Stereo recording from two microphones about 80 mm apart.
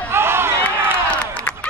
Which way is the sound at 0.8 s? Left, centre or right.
Right.